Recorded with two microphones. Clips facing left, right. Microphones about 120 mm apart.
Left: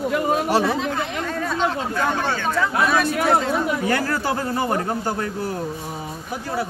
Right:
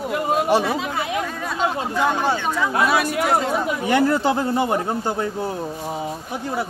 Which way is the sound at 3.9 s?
20° right (ahead or behind).